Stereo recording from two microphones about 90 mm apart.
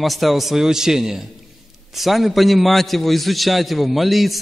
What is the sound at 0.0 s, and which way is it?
A man's voice, centre (ahead or behind).